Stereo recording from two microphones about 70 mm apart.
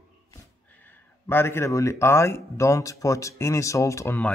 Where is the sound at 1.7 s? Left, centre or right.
Left.